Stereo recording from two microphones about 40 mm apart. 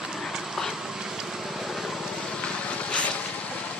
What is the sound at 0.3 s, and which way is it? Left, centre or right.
Dog, centre.